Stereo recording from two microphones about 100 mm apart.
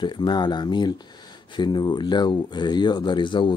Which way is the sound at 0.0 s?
50° left (ahead or behind).